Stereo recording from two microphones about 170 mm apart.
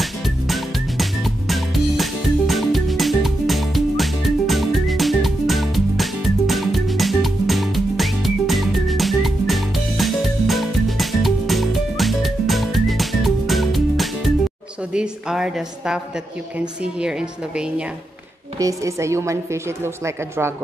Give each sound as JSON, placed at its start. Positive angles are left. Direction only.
{"t": 0.0, "sound": "music", "side_deg": 0}
{"t": 15.0, "sound": "a woman's voice", "side_deg": -5}
{"t": 18.6, "sound": "a woman's voice", "side_deg": -20}